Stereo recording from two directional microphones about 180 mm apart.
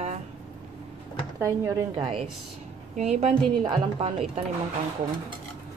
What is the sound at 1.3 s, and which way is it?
Speech, 15° right (ahead or behind).